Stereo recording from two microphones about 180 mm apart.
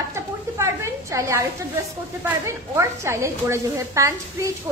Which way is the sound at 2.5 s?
15° right (ahead or behind).